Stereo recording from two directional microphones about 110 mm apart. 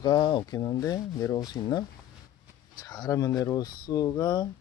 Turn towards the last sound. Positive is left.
turn(degrees=40)  # may be behind; listen again after turning